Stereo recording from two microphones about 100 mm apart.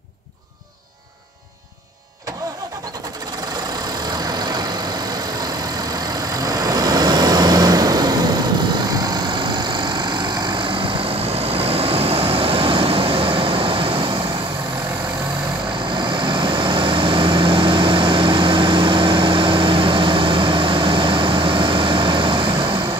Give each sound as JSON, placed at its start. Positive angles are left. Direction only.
{"t": 4.2, "sound": "vehicle", "side_deg": -40}
{"t": 6.3, "sound": "vehicle", "side_deg": -40}
{"t": 16.0, "sound": "vehicle", "side_deg": -50}